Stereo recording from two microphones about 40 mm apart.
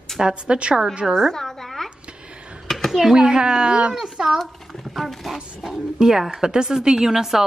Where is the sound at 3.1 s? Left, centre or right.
Centre.